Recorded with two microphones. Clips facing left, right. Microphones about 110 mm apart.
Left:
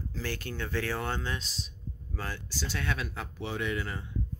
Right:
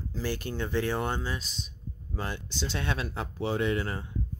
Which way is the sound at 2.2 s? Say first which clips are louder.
Right 3 dB; 20° right (ahead or behind).